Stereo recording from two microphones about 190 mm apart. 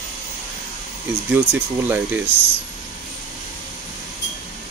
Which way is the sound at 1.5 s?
10° right (ahead or behind).